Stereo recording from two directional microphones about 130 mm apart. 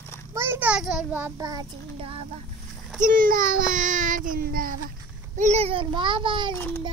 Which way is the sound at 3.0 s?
90° right.